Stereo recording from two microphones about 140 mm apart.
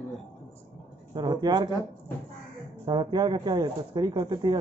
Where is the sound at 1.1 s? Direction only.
30° right (ahead or behind).